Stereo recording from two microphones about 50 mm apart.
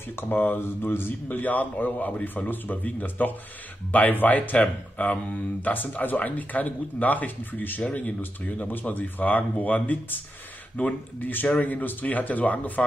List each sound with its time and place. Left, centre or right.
0.1 s speech: left
7.8 s speech: left